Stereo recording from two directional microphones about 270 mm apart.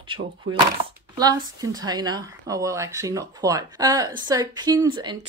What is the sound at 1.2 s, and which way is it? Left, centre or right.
Speech, centre.